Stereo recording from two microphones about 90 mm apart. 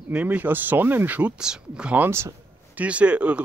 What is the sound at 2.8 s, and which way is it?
Speech, 15° right (ahead or behind).